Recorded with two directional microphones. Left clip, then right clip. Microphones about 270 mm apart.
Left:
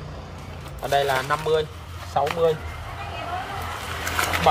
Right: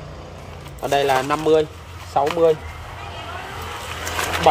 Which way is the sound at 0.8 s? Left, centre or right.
Right.